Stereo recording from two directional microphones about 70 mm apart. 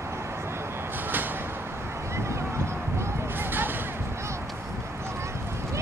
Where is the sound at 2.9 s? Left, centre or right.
Right.